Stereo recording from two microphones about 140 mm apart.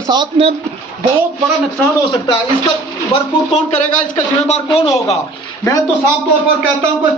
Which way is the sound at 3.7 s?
60° left (ahead or behind).